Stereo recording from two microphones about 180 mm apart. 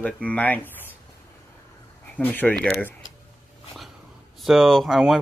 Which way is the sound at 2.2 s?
10° left (ahead or behind).